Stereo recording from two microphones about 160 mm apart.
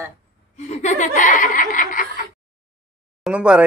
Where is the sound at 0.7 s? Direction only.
45° left (ahead or behind).